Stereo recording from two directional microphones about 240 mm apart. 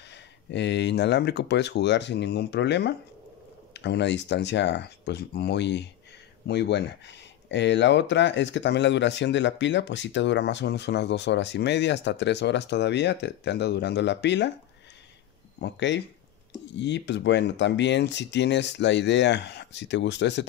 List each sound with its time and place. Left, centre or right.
0.1 s speech: left
15.6 s speech: left